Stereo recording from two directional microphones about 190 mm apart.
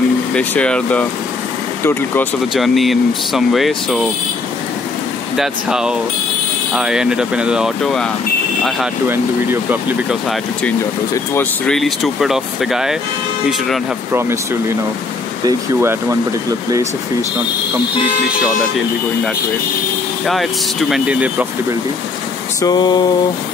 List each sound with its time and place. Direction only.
0.3 s speech: 5° left (ahead or behind)
2.5 s speech: centre (ahead or behind)
5.3 s speech: 5° right (ahead or behind)
9.0 s speech: 10° right (ahead or behind)
11.3 s speech: 5° left (ahead or behind)
15.4 s speech: 15° right (ahead or behind)
20.9 s speech: 5° right (ahead or behind)
22.6 s mantra: 20° left (ahead or behind)